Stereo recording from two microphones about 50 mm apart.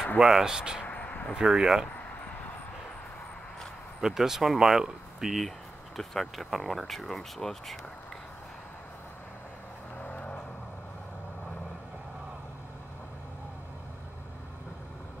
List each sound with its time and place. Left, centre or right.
0.2 s speech: centre
0.8 s a sound: left
1.3 s speech: centre
4.0 s speech: centre
9.9 s vehicle: left